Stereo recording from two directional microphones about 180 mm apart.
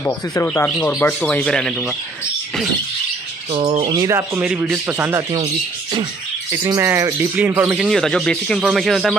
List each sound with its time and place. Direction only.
0.0 s speech: 15° left (ahead or behind)
3.5 s speech: 30° right (ahead or behind)
4.4 s speech: 5° right (ahead or behind)
6.6 s speech: 15° right (ahead or behind); by 9.1 s centre (ahead or behind)